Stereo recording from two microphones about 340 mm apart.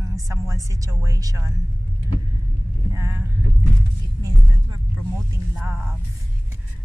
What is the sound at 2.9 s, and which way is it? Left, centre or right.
Vehicle, centre.